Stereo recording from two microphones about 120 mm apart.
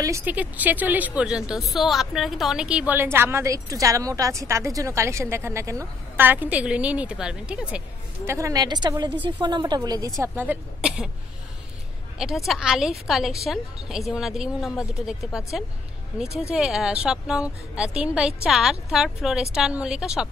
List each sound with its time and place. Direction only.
0.2 s a woman's voice: 15° right (ahead or behind)
8.3 s a woman's voice: 25° right (ahead or behind)
10.2 s a woman's voice: 15° right (ahead or behind)
12.4 s a woman's voice: 5° right (ahead or behind)